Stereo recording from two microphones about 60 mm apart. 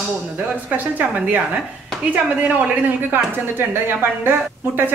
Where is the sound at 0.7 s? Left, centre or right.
Right.